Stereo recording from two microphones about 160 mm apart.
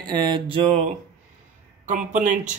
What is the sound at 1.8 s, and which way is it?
Speech, 55° right (ahead or behind).